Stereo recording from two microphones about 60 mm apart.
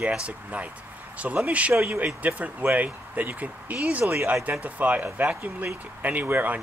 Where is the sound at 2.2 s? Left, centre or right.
Right.